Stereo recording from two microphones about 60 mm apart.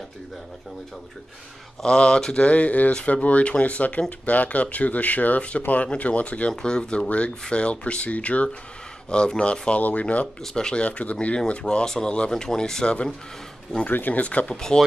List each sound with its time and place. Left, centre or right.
1.8 s speech: centre
10.4 s speech: centre
13.8 s speech: left; by 14.8 s centre